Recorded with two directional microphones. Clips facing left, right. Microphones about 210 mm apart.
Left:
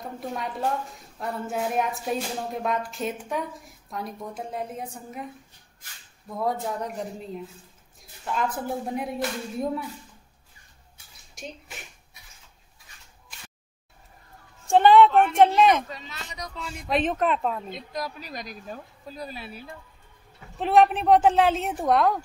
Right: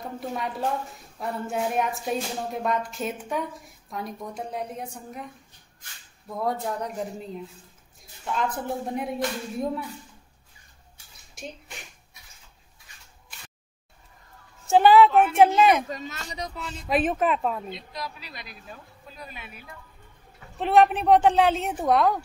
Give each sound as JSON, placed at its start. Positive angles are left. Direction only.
{"t": 0.2, "sound": "speech", "side_deg": 0}
{"t": 6.3, "sound": "speech", "side_deg": 0}
{"t": 8.5, "sound": "speech", "side_deg": 0}
{"t": 11.3, "sound": "a sound", "side_deg": 0}
{"t": 14.7, "sound": "speech", "side_deg": -5}
{"t": 15.9, "sound": "speech", "side_deg": -45}
{"t": 16.8, "sound": "speech", "side_deg": -5}
{"t": 17.6, "sound": "speech", "side_deg": 45}
{"t": 20.5, "sound": "speech", "side_deg": 0}